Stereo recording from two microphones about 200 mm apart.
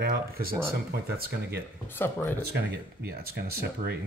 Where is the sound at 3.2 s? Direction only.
50° right (ahead or behind).